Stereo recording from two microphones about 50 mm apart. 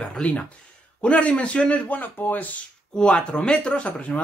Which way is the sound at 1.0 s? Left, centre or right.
Left.